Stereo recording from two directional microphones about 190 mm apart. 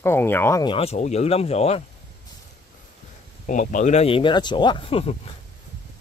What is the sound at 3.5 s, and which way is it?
Speech, 40° left (ahead or behind).